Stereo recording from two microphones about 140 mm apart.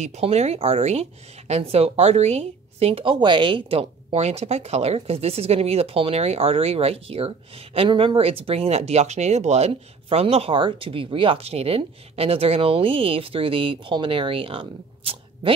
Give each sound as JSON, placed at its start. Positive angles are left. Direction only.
{"t": 0.0, "sound": "speech", "side_deg": -50}